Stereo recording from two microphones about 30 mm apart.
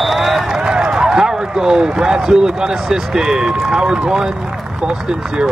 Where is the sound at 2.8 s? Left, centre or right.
Centre.